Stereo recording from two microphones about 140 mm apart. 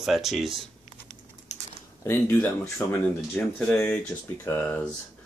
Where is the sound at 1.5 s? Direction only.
55° left (ahead or behind).